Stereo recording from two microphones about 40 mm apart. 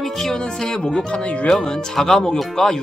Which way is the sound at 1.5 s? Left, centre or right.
Centre.